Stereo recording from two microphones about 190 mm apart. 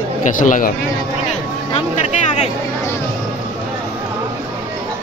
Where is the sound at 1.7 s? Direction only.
40° left (ahead or behind).